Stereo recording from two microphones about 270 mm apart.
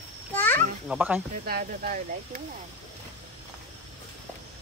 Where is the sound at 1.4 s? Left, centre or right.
Right.